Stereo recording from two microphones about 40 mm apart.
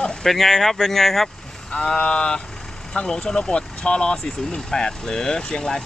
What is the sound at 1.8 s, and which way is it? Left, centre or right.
Speech, left.